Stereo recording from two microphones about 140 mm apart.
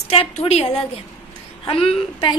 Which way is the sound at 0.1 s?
45° left (ahead or behind).